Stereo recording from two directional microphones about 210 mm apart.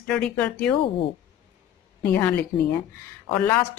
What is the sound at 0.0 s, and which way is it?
Speech, 5° left (ahead or behind).